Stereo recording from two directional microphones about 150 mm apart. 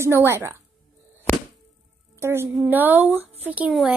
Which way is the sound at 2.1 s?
15° right (ahead or behind).